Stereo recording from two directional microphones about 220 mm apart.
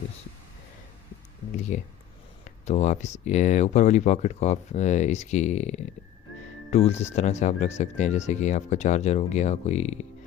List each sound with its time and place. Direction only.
2.4 s speech: 30° left (ahead or behind)